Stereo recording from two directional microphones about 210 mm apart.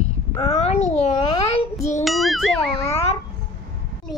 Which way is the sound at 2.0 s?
Centre (ahead or behind).